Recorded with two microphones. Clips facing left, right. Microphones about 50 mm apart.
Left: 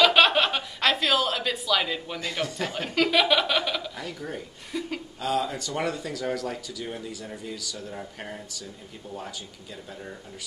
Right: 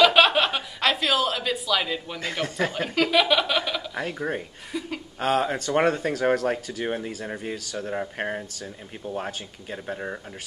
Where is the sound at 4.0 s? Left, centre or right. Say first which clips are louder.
Right 6 dB; right.